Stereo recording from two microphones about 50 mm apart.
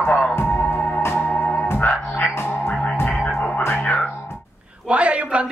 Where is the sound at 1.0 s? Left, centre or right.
Left.